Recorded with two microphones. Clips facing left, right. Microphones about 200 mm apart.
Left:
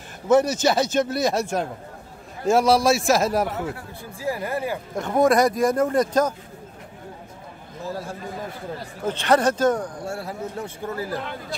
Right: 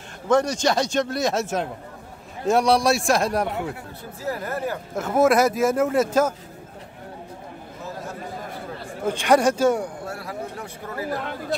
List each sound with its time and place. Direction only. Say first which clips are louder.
0.3 s a man's voice: left 2 dB; 5° left (ahead or behind)
4.9 s a man's voice: even; 5° right (ahead or behind)
9.0 s a man's voice: right 1 dB; 10° right (ahead or behind)
10.0 s speech: left 2 dB; 25° left (ahead or behind)